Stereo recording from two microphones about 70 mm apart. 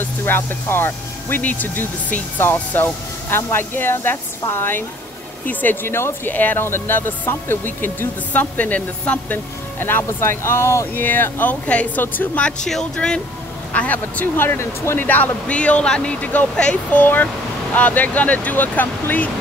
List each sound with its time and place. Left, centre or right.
0.0 s speech: left
1.4 s speech: left
9.8 s speech: left
11.0 s speech: left
12.4 s speech: centre; by 19.3 s left